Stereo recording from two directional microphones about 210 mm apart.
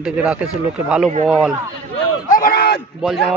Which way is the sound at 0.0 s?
5° right (ahead or behind).